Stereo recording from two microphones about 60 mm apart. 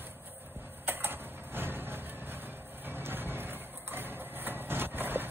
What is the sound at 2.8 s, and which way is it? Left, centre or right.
Vehicle, right.